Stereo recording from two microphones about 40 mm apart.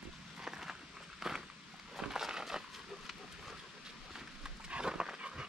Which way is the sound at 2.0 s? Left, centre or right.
Centre.